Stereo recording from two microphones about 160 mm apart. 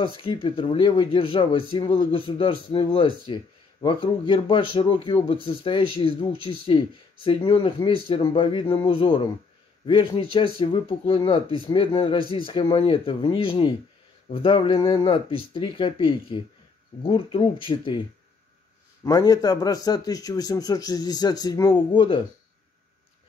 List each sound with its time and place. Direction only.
0.2 s speech: 35° left (ahead or behind)
19.0 s a man's voice: 20° left (ahead or behind)